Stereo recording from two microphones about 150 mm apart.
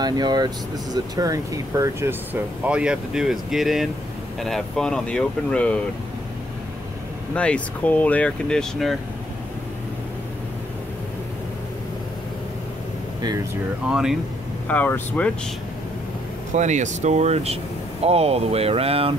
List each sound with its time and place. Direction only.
0.0 s speech: 25° right (ahead or behind); by 5.8 s 5° left (ahead or behind)
7.3 s speech: 10° left (ahead or behind)
13.8 s speech: 5° right (ahead or behind)
14.7 s speech: 10° left (ahead or behind)
16.5 s speech: 55° right (ahead or behind)